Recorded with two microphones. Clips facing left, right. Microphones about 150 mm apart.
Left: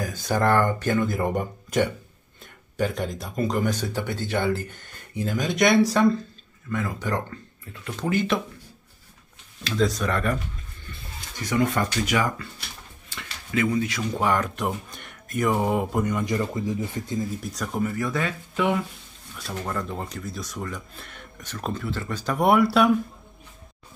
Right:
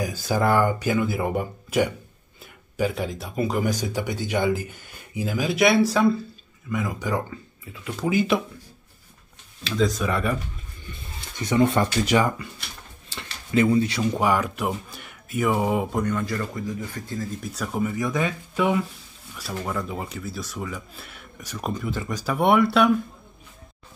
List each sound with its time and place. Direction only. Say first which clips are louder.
0.0 s speech: even; 5° right (ahead or behind)
9.6 s speech: right 1 dB; centre (ahead or behind)
10.9 s speech: right 1 dB; 20° right (ahead or behind)
13.1 s a sound: right 4 dB; 30° right (ahead or behind)
14.1 s speech: left 1 dB; 10° right (ahead or behind); by 17.4 s 20° left (ahead or behind)
17.4 s speech: right 1 dB; 5° right (ahead or behind)
17.9 s speech: right 2 dB; 15° right (ahead or behind); by 22.9 s centre (ahead or behind)